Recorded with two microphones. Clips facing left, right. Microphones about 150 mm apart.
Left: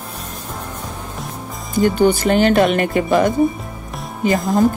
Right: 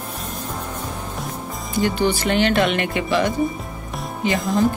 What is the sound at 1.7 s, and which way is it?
Speech, 45° left (ahead or behind).